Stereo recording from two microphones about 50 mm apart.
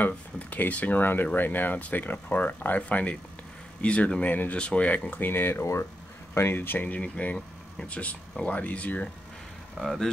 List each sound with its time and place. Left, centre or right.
0.0 s speech: left
5.3 s speech: left
5.6 s speech: left
6.3 s speech: left
6.9 s speech: left
9.8 s speech: centre